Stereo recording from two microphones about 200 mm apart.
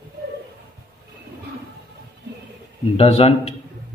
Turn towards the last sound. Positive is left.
turn(degrees=30)  # may be behind; listen again after turning